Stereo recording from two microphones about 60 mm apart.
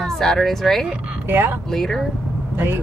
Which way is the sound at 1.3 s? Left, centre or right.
Right.